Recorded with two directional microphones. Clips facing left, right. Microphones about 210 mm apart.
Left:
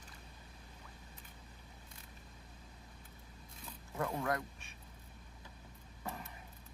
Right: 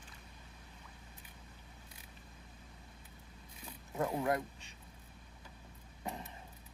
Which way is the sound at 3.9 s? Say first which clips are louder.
Right 3 dB; 20° right (ahead or behind).